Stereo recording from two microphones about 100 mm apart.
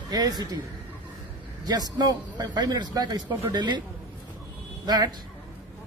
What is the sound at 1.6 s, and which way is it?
A man's voice, 45° right (ahead or behind).